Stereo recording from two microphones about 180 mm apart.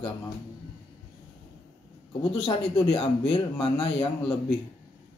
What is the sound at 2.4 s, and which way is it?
A man's voice, 30° left (ahead or behind).